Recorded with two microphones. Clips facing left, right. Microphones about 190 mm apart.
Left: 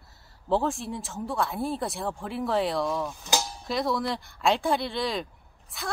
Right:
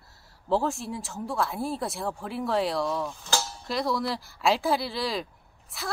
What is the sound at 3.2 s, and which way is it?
Speech, 15° left (ahead or behind).